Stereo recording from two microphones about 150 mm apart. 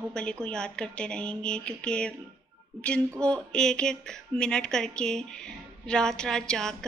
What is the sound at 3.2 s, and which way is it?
A woman's voice, 5° left (ahead or behind).